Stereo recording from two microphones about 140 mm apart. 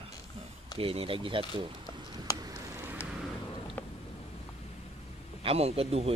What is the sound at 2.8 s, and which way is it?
Vehicle, 15° right (ahead or behind).